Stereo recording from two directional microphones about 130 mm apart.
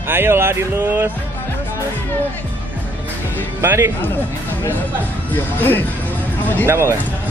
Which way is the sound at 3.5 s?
20° right (ahead or behind).